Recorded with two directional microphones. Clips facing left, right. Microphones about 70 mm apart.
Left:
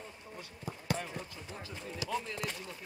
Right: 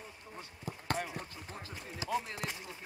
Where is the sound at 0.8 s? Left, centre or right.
Right.